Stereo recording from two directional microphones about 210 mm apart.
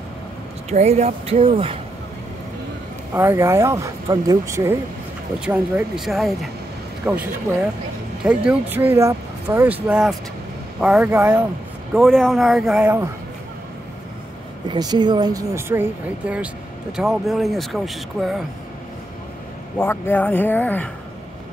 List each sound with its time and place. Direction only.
0.7 s speech: 30° right (ahead or behind)
3.2 s speech: 15° right (ahead or behind)
14.7 s speech: 20° right (ahead or behind); by 18.4 s centre (ahead or behind)
19.8 s speech: 10° left (ahead or behind)